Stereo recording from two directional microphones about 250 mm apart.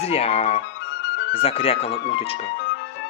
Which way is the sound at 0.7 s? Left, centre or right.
Left.